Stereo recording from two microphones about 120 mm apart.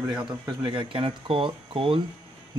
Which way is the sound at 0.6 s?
45° right (ahead or behind).